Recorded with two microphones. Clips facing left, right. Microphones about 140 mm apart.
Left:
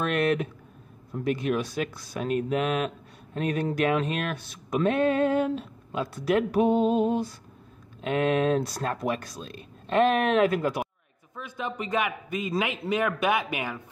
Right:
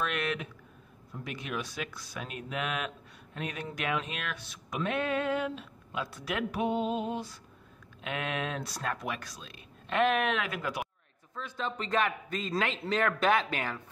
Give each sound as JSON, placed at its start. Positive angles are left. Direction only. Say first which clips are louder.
{"t": 0.0, "sound": "speech", "louder": "left 8 dB", "side_deg": 45}
{"t": 11.3, "sound": "a man's voice", "louder": "left 3 dB", "side_deg": 15}